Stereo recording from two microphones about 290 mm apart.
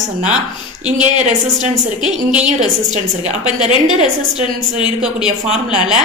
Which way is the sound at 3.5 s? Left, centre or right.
Centre.